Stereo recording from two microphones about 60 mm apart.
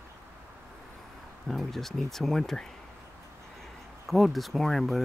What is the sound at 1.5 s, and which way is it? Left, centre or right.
Speech, centre.